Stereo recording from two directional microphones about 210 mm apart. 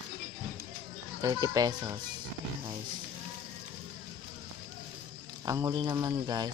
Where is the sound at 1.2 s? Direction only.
20° right (ahead or behind).